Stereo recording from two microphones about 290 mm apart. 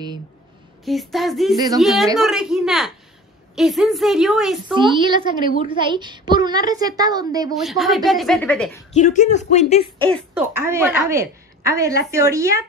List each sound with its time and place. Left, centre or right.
0.8 s a woman's voice: centre
4.7 s a woman's voice: centre
7.6 s a woman's voice: centre
8.9 s speech: left
10.1 s a woman's voice: centre